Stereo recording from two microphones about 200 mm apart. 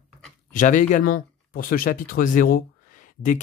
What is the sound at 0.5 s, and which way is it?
Speech, 40° left (ahead or behind).